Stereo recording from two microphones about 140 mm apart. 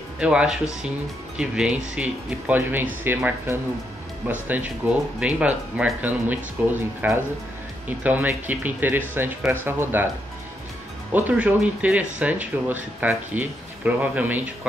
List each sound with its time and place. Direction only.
0.2 s speech: 5° right (ahead or behind)
11.2 s speech: 10° right (ahead or behind)